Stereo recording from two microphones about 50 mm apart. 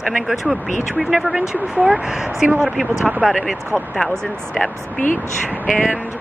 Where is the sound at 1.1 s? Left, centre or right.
Centre.